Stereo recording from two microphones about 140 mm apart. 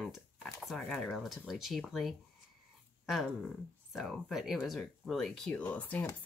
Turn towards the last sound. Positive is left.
turn(degrees=10)  # may be behind; listen again after turning